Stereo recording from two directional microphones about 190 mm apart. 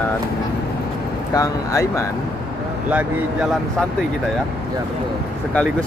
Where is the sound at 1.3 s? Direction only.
15° left (ahead or behind).